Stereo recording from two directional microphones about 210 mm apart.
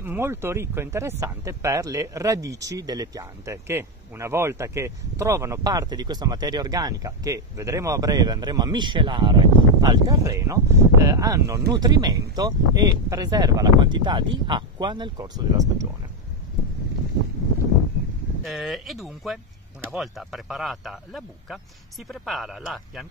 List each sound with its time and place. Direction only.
0.0 s speech: 10° right (ahead or behind)
18.4 s speech: centre (ahead or behind)